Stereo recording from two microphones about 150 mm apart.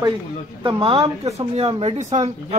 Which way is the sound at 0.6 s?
40° right (ahead or behind).